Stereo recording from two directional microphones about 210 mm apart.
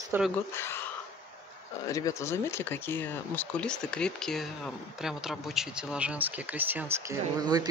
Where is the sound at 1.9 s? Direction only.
15° left (ahead or behind).